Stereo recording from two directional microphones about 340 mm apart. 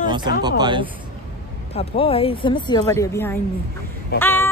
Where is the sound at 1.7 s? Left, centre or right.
Centre.